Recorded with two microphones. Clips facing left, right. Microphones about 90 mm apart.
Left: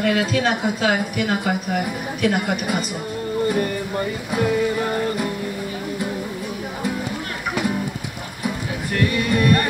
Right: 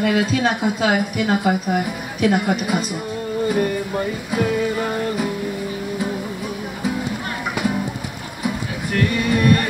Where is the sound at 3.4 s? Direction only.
5° right (ahead or behind).